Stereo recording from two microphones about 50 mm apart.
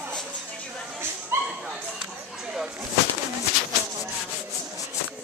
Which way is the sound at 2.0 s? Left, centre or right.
Centre.